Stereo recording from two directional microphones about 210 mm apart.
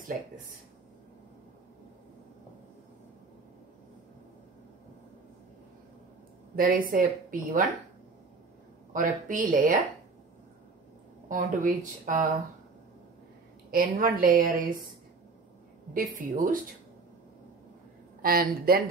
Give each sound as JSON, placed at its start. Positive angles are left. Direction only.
{"t": 6.5, "sound": "a woman's voice", "side_deg": -45}
{"t": 8.9, "sound": "a woman's voice", "side_deg": -40}
{"t": 11.2, "sound": "a woman's voice", "side_deg": -40}
{"t": 13.7, "sound": "a woman's voice", "side_deg": -45}
{"t": 15.9, "sound": "a woman's voice", "side_deg": -40}
{"t": 18.2, "sound": "a woman's voice", "side_deg": -45}